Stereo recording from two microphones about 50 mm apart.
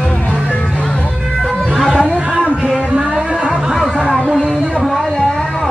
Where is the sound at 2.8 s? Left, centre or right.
Centre.